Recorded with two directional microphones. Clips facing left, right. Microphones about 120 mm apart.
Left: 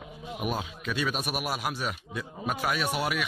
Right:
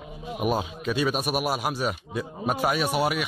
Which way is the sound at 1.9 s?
25° right (ahead or behind).